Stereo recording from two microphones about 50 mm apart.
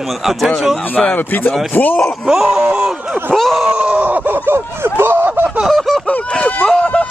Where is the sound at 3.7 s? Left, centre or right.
Right.